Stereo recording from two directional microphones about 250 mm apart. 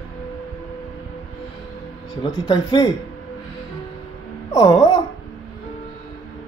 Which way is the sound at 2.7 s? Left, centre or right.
Centre.